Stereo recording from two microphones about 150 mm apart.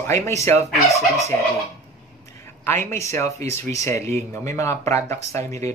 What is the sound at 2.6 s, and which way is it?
Speech, 15° left (ahead or behind).